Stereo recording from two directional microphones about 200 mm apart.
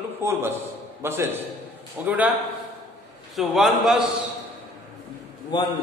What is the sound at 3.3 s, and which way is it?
Speech, centre (ahead or behind).